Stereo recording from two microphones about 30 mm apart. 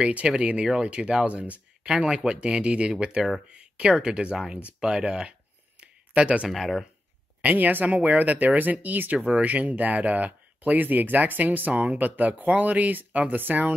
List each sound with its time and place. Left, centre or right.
0.4 s speech: right
3.4 s a sound: right
3.8 s speech: right
4.4 s speech: right
6.2 s speech: right
6.5 s speech: centre
7.4 s speech: right
8.8 s speech: right
9.2 s speech: right